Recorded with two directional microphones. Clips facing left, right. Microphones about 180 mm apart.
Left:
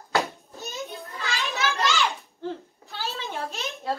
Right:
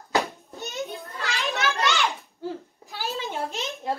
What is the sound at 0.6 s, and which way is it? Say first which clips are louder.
Children playing: right 3 dB; 60° right (ahead or behind).